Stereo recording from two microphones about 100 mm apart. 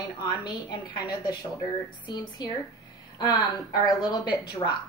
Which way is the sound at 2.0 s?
45° left (ahead or behind).